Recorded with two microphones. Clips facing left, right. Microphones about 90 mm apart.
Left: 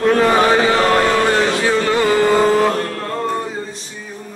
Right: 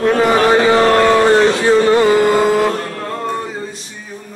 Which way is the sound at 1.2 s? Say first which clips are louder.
Right 5 dB; 20° right (ahead or behind).